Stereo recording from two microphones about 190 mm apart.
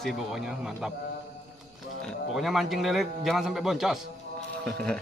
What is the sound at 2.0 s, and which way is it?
Speech, centre (ahead or behind).